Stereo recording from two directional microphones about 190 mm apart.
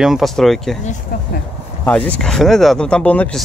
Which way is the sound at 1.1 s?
50° left (ahead or behind).